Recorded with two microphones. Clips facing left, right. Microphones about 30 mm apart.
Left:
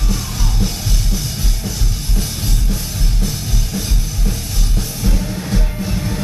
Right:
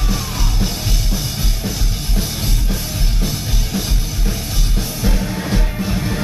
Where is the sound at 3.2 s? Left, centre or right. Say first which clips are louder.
Right 1 dB; centre.